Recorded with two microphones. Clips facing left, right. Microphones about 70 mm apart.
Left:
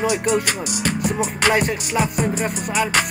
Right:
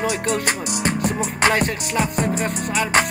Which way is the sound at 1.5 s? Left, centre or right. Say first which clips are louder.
Left 1 dB; centre.